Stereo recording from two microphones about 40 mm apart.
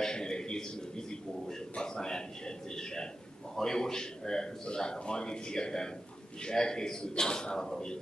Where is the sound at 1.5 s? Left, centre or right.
Centre.